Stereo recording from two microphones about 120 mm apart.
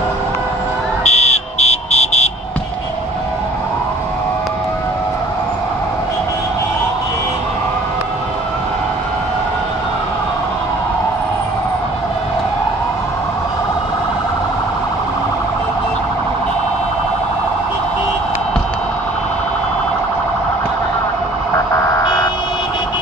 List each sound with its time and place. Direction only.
1.0 s buzzer: 65° left (ahead or behind)
22.0 s vehicle: 35° left (ahead or behind)